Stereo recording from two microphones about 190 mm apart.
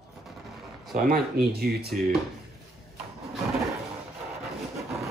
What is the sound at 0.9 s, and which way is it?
Speech, 50° right (ahead or behind).